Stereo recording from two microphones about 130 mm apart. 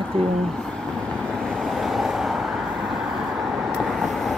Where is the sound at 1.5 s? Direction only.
Centre (ahead or behind).